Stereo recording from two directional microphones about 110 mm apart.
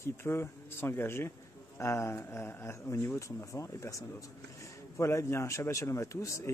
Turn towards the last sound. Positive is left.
turn(degrees=30)  # may be behind; listen again after turning